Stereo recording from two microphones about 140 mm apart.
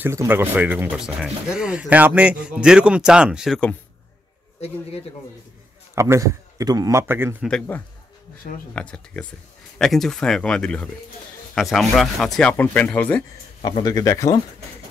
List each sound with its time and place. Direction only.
0.0 s speech: 20° right (ahead or behind); by 3.6 s centre (ahead or behind)
5.9 s a man's voice: 20° right (ahead or behind)
7.4 s speech: 10° left (ahead or behind)
13.6 s speech: 35° left (ahead or behind)